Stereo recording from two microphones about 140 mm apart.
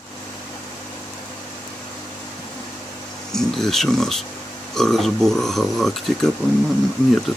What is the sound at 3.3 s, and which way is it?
Speech, 5° left (ahead or behind).